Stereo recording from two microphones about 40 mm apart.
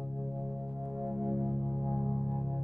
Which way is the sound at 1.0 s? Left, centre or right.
Right.